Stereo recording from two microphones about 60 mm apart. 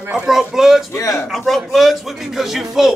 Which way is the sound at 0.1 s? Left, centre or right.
Centre.